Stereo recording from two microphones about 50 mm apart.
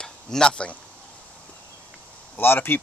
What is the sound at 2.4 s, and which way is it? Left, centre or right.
Speech, left.